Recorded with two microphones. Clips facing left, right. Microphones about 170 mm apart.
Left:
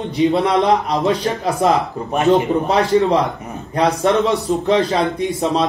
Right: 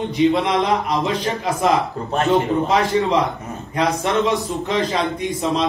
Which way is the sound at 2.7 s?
35° left (ahead or behind).